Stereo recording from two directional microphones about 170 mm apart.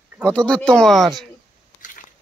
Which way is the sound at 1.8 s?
50° left (ahead or behind).